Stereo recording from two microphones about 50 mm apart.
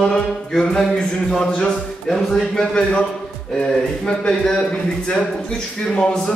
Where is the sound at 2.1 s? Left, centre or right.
Centre.